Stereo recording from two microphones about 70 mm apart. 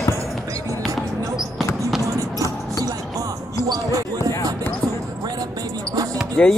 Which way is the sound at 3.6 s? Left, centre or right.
Right.